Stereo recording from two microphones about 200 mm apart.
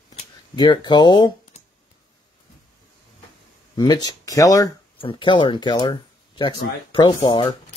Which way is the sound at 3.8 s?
20° left (ahead or behind).